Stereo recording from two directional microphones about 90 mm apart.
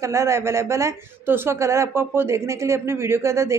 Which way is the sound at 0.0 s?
30° right (ahead or behind).